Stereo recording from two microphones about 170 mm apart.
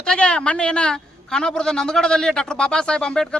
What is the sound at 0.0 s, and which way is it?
A woman's voice, 5° left (ahead or behind).